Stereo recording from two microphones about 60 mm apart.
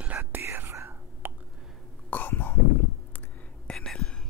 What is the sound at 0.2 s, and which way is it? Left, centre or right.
Whispering, right.